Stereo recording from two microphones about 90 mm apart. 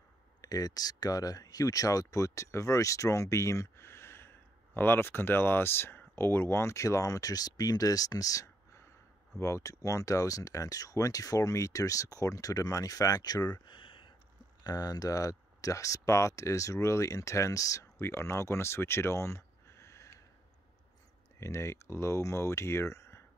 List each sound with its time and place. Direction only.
0.4 s speech: 45° left (ahead or behind)
13.7 s a sound: 75° left (ahead or behind)
14.6 s speech: 45° left (ahead or behind); by 20.1 s 30° left (ahead or behind)
21.4 s speech: 30° left (ahead or behind)